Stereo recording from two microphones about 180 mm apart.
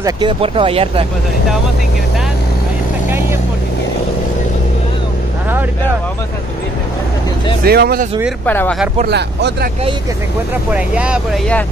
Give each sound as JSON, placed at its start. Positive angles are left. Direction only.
{"t": 0.0, "sound": "speech", "side_deg": -25}
{"t": 3.1, "sound": "speech", "side_deg": -10}
{"t": 7.6, "sound": "speech", "side_deg": -60}
{"t": 8.5, "sound": "speech", "side_deg": 10}
{"t": 9.0, "sound": "speech", "side_deg": -65}
{"t": 10.7, "sound": "speech", "side_deg": -5}